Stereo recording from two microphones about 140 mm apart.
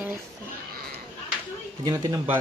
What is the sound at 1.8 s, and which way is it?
Speech, 30° right (ahead or behind).